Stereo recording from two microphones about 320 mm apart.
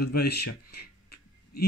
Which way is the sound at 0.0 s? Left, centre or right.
Left.